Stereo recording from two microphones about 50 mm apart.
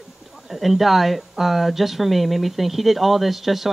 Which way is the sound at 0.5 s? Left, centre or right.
Centre.